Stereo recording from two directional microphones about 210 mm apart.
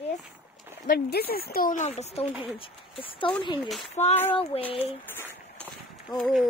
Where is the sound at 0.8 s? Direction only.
50° left (ahead or behind).